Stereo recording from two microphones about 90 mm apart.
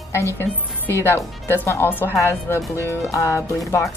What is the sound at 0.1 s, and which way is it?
Speech, 25° left (ahead or behind).